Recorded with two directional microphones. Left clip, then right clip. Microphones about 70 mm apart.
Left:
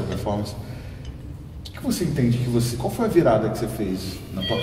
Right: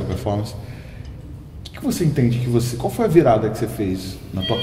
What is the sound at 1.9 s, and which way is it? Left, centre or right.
A man's voice, right.